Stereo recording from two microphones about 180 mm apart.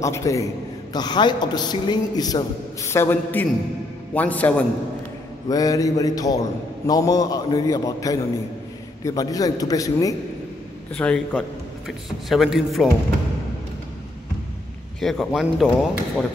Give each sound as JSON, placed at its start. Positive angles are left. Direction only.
{"t": 0.0, "sound": "a man's voice", "side_deg": 15}
{"t": 5.5, "sound": "a man's voice", "side_deg": 20}
{"t": 11.0, "sound": "a man's voice", "side_deg": 5}
{"t": 15.0, "sound": "speech", "side_deg": 0}